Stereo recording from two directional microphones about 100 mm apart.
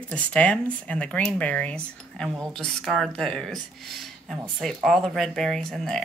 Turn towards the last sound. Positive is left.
turn(degrees=5)  # may be behind; listen again after turning